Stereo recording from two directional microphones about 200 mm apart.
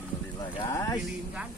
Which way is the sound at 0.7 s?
15° left (ahead or behind).